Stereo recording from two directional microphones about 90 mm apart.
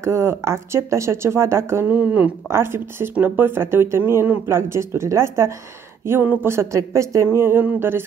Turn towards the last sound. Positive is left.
turn(degrees=-25)  # may be behind; listen again after turning